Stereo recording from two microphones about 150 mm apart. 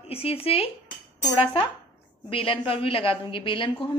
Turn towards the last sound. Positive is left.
turn(degrees=35)  # may be behind; listen again after turning